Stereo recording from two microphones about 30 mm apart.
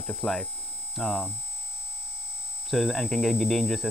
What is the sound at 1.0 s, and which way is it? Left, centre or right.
Hum, centre.